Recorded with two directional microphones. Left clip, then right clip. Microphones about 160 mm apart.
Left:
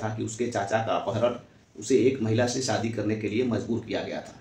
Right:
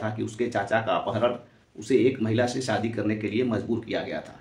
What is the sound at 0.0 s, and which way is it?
Speech, 15° right (ahead or behind).